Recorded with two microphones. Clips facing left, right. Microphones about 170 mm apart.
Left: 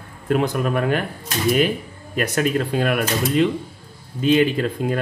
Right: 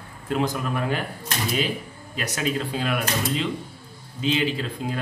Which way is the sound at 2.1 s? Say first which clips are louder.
Left 6 dB; 55° left (ahead or behind).